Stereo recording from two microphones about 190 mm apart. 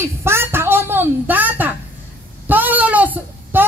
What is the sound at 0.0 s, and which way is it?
A woman's voice, 15° right (ahead or behind).